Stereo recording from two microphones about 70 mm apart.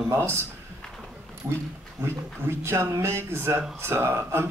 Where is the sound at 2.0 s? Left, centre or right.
Right.